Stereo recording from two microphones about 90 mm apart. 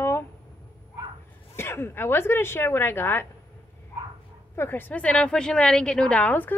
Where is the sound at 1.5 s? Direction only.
30° left (ahead or behind).